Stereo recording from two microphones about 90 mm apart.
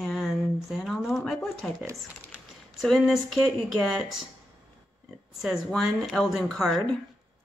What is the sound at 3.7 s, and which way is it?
Speech, centre (ahead or behind).